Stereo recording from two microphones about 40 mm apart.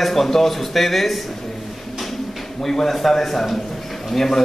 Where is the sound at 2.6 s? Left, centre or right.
Centre.